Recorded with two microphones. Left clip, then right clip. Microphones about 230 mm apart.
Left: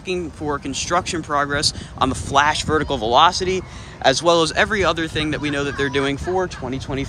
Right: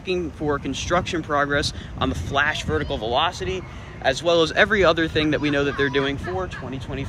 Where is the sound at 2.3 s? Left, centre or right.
Centre.